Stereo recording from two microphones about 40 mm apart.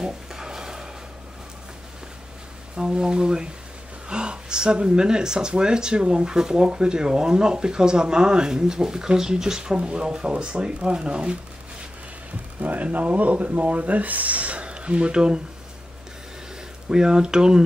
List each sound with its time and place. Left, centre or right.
0.0 s a sound: centre
2.7 s speech: centre
12.5 s speech: right
16.9 s speech: centre